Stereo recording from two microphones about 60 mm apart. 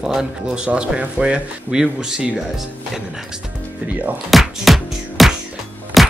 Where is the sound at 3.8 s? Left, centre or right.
Right.